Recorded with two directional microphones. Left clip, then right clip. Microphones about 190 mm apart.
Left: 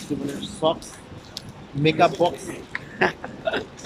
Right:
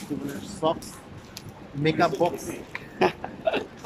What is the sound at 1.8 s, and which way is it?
Speech, 5° left (ahead or behind).